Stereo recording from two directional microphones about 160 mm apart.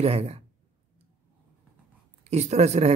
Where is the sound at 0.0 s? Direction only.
40° right (ahead or behind).